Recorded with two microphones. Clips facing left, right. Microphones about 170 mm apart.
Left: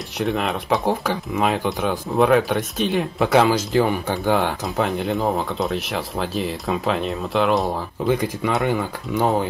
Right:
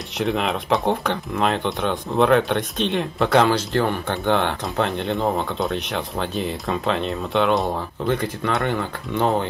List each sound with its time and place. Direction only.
0.2 s speech: centre (ahead or behind)